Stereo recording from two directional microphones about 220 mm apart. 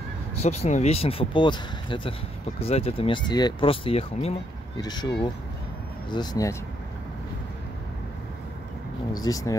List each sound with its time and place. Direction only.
0.4 s speech: 30° left (ahead or behind)
9.2 s speech: 15° left (ahead or behind)